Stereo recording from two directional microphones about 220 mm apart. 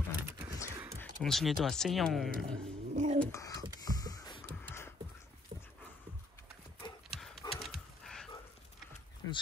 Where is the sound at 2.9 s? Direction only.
35° right (ahead or behind).